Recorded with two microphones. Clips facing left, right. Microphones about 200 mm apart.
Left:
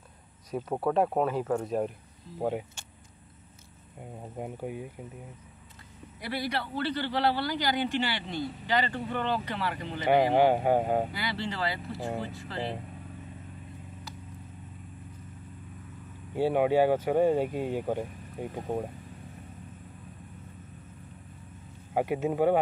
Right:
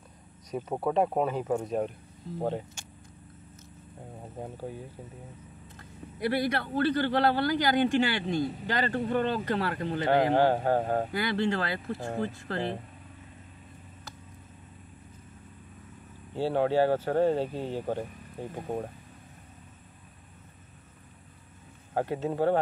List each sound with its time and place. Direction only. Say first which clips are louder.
0.6 s speech: even; 5° right (ahead or behind)
4.4 s speech: left 2 dB; 15° left (ahead or behind)
6.1 s a man's voice: right 5 dB; 50° right (ahead or behind)
10.0 s speech: left 1 dB; 10° left (ahead or behind)
11.1 s a man's voice: right 6 dB; 50° right (ahead or behind)
16.3 s speech: left 1 dB; 15° left (ahead or behind)
21.9 s speech: left 2 dB; 15° left (ahead or behind)